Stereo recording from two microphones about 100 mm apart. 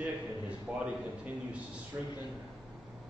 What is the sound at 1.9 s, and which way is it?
Speech, 30° right (ahead or behind).